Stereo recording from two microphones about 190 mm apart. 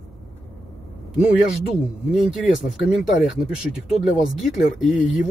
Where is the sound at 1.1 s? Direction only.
5° right (ahead or behind).